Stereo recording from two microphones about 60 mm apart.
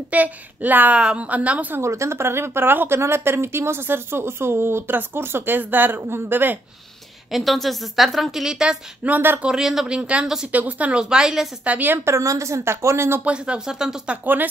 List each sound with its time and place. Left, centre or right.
0.1 s speech: right
1.8 s speech: right
3.0 s speech: right
7.2 s a woman's voice: centre
9.0 s speech: right
9.4 s speech: centre
9.8 s speech: centre
10.2 s speech: centre
10.5 s speech: right
11.6 s speech: right
12.0 s speech: right
13.2 s speech: centre
14.2 s speech: right